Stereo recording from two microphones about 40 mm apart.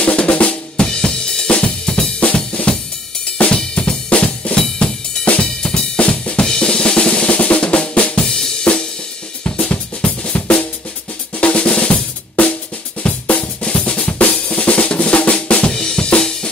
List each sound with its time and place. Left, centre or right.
0.0 s drum: left; by 1.4 s centre
2.1 s drum kit: left
4.6 s drum kit: left
5.2 s drum kit: left
5.6 s drum kit: centre
5.9 s drum kit: left
6.6 s drum: left
8.7 s drum kit: left
11.3 s drum: left
13.8 s drum kit: left
14.4 s drum: left
15.7 s drum kit: left